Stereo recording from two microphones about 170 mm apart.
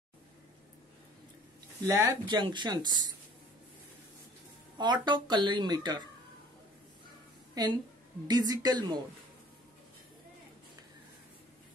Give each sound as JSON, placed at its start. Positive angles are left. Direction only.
{"t": 1.9, "sound": "speech", "side_deg": -20}
{"t": 4.7, "sound": "speech", "side_deg": -25}
{"t": 7.6, "sound": "a woman's voice", "side_deg": -20}